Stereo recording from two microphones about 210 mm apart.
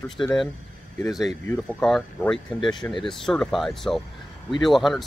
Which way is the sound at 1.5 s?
5° left (ahead or behind).